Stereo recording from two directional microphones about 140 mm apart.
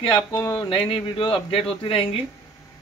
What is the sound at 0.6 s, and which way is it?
A man's voice, 35° left (ahead or behind).